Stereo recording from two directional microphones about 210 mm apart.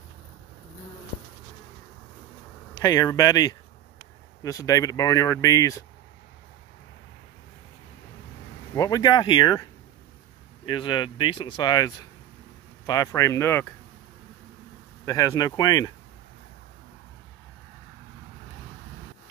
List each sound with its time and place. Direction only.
2.8 s speech: 15° left (ahead or behind)
8.7 s speech: 15° left (ahead or behind)
15.0 s speech: 15° left (ahead or behind)